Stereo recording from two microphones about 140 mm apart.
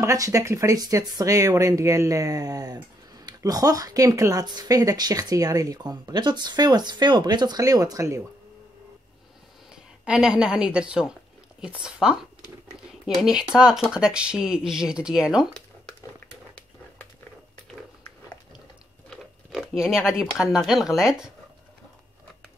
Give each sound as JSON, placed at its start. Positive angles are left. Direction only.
{"t": 0.0, "sound": "speech", "side_deg": -20}
{"t": 9.7, "sound": "speech", "side_deg": -5}
{"t": 19.0, "sound": "a sound", "side_deg": 0}
{"t": 20.1, "sound": "speech", "side_deg": -5}